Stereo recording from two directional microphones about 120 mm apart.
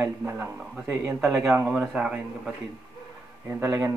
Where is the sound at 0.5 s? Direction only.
10° right (ahead or behind).